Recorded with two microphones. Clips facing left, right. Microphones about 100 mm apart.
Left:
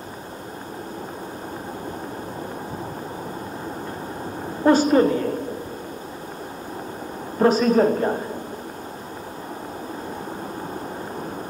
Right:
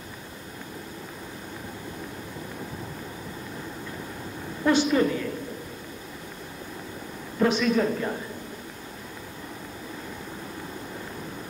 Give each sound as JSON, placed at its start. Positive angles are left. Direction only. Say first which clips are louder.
{"t": 4.6, "sound": "a woman's voice", "louder": "left 6 dB", "side_deg": 40}
{"t": 7.3, "sound": "a woman's voice", "louder": "left 6 dB", "side_deg": 40}